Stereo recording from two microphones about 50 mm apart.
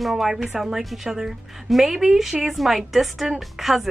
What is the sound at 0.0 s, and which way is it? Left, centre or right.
A woman's voice, centre.